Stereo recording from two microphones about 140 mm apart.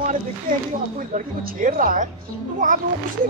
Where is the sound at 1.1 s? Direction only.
75° right (ahead or behind).